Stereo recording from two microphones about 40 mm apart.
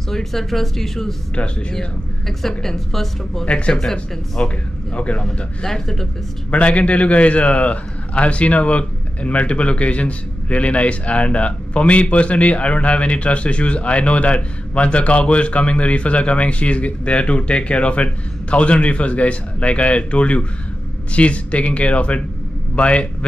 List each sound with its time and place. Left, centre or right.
0.1 s speech: centre
3.4 s a man's voice: left
5.2 s speech: centre
6.5 s a man's voice: left